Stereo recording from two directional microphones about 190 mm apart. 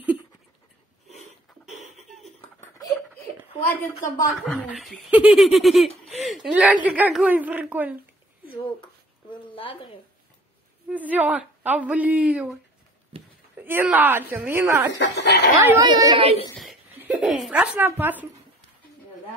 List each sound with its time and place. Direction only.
3.6 s speech: 10° left (ahead or behind)
4.6 s a woman's voice: 5° right (ahead or behind)
9.5 s a sound: 25° left (ahead or behind)
10.9 s a woman's voice: 10° right (ahead or behind)
13.1 s a sound: 30° right (ahead or behind)
13.6 s a woman's voice: 10° right (ahead or behind)
15.0 s speech: 60° left (ahead or behind)
15.9 s speech: 20° right (ahead or behind)
17.0 s a woman's voice: 5° right (ahead or behind)